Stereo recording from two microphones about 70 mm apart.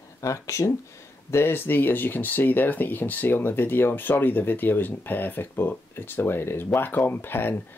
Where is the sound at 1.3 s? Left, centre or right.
Left.